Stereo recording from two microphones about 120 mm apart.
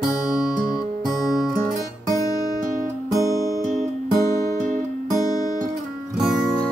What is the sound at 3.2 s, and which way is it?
Music, 25° left (ahead or behind).